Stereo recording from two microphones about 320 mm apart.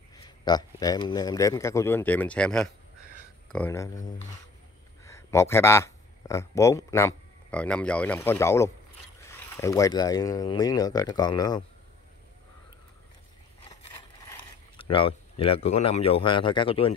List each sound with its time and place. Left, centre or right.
0.1 s a man's voice: centre
14.8 s a man's voice: centre